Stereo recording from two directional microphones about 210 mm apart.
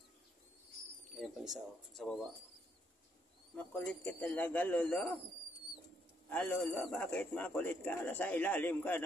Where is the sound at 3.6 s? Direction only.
5° left (ahead or behind).